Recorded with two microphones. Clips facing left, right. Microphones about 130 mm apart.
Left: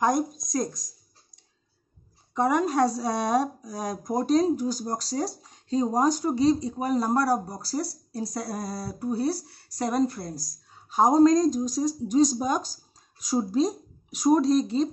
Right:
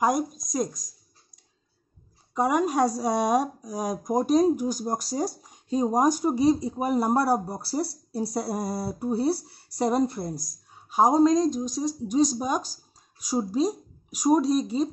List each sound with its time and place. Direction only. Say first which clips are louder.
0.0 s a woman's voice: even; 10° right (ahead or behind)
2.3 s a woman's voice: even; 10° right (ahead or behind)